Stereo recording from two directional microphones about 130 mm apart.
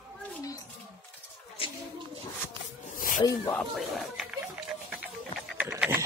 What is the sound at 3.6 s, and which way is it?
Speech, centre (ahead or behind).